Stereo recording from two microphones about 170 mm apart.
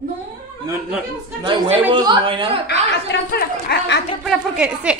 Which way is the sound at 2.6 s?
70° left (ahead or behind).